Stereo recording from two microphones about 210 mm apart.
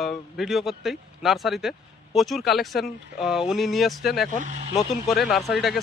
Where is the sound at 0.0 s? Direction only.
Centre (ahead or behind).